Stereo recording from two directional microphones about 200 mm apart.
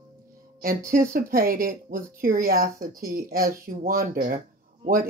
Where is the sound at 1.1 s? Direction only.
45° right (ahead or behind).